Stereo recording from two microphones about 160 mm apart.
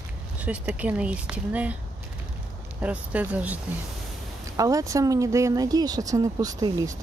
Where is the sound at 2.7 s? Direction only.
10° right (ahead or behind).